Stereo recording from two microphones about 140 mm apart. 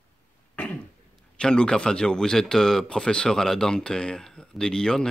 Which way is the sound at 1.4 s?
5° left (ahead or behind).